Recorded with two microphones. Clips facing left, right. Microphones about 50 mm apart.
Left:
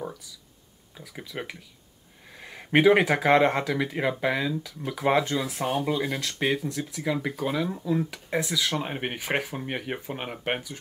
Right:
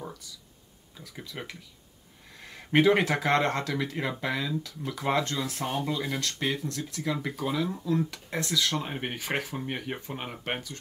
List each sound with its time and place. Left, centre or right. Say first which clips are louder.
0.9 s speech: left 4 dB; centre